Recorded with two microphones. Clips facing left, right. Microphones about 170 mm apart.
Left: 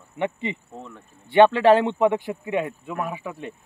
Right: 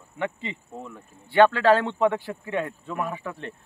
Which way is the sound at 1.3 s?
20° left (ahead or behind).